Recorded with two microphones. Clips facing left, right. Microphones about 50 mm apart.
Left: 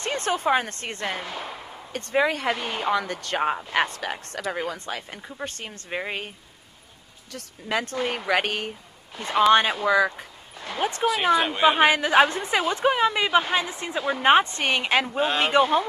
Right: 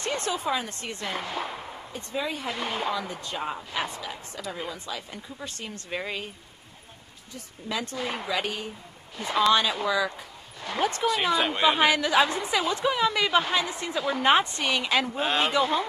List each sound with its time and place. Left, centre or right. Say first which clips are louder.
0.0 s speech: left 4 dB; left
1.9 s a woman's voice: left 9 dB; left
5.9 s speech: left 3 dB; left
7.6 s speech: left 5 dB; left
9.5 s a woman's voice: left 5 dB; left
9.8 s a sound: left 5 dB; left
11.3 s speech: left 3 dB; centre
11.8 s a woman's voice: left 5 dB; left
13.1 s a woman's voice: left 2 dB; left
15.0 s speech: left 2 dB; centre
15.5 s speech: left 5 dB; left